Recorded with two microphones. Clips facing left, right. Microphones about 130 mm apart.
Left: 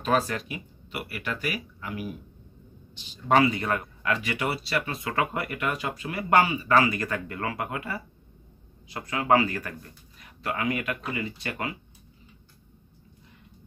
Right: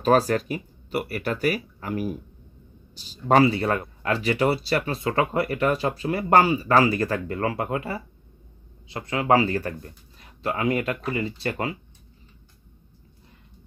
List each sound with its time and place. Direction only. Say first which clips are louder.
0.0 s speech: right 6 dB; 40° right (ahead or behind)